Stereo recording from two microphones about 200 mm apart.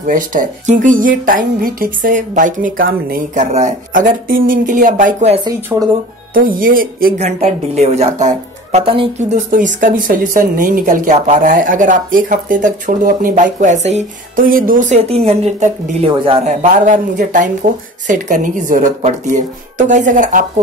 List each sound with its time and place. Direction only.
0.0 s speech: 40° right (ahead or behind)
7.2 s speech: 35° right (ahead or behind)
9.5 s speech: 40° right (ahead or behind)